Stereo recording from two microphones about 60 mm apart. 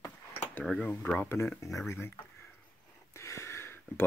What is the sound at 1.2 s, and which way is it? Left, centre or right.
Speech, left.